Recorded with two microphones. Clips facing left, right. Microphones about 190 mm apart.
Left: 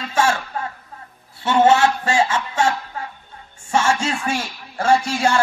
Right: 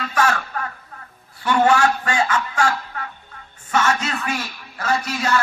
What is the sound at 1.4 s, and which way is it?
Speech, 25° left (ahead or behind).